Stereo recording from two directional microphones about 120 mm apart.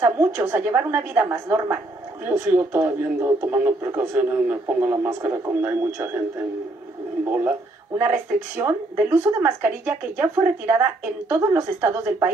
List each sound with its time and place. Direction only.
0.0 s speech: 15° right (ahead or behind)
7.2 s speech: 15° right (ahead or behind)